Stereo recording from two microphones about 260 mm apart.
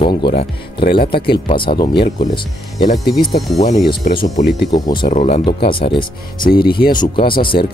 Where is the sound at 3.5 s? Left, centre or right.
Left.